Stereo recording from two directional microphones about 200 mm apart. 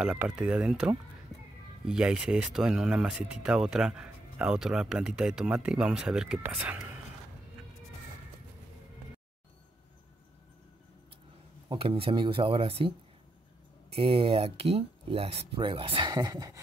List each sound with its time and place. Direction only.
0.0 s speech: 5° right (ahead or behind)
1.3 s a sound: centre (ahead or behind)
1.9 s speech: 5° right (ahead or behind)
11.7 s speech: 25° right (ahead or behind)
13.9 s speech: 25° right (ahead or behind)